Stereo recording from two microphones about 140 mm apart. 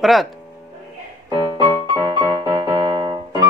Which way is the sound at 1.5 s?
30° right (ahead or behind).